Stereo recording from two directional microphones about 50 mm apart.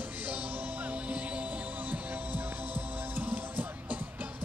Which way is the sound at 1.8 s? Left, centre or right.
Right.